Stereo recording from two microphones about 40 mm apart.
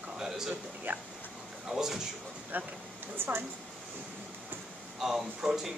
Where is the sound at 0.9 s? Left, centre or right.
Right.